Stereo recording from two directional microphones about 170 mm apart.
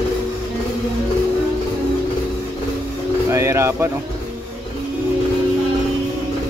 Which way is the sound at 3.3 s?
15° right (ahead or behind).